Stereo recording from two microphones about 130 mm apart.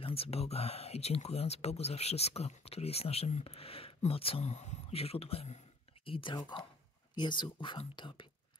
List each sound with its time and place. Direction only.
0.0 s speech: 50° left (ahead or behind)